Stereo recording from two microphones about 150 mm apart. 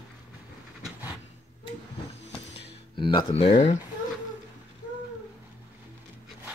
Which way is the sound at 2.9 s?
30° left (ahead or behind).